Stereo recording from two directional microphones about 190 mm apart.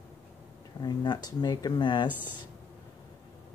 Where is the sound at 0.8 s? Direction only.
20° left (ahead or behind).